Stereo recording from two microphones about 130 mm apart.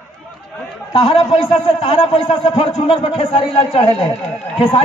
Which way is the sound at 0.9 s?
50° left (ahead or behind).